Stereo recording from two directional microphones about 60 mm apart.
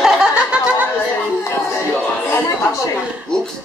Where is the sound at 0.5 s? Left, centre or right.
Right.